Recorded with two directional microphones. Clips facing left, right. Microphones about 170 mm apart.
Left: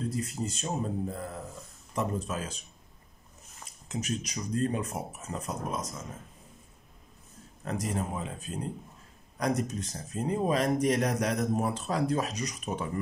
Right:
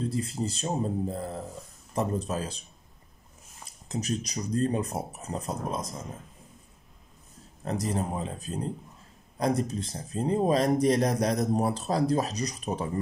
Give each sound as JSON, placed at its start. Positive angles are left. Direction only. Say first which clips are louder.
{"t": 0.0, "sound": "speech", "louder": "right 3 dB", "side_deg": -30}
{"t": 3.9, "sound": "speech", "louder": "right 3 dB", "side_deg": -35}
{"t": 7.6, "sound": "speech", "louder": "right 3 dB", "side_deg": -35}